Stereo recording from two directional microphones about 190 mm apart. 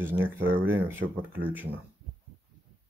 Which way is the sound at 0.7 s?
10° right (ahead or behind).